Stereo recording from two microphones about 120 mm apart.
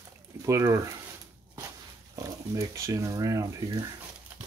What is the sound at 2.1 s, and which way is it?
Speech, 25° right (ahead or behind).